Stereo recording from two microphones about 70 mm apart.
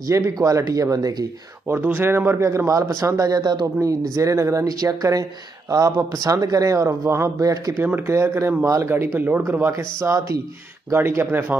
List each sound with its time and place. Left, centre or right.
0.0 s speech: right
1.7 s speech: right
4.1 s speech: right
7.7 s speech: right
8.1 s speech: right
10.0 s speech: right
10.9 s speech: right